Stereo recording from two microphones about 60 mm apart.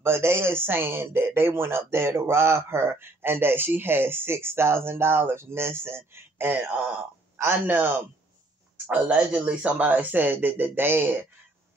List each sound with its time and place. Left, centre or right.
0.0 s speech: right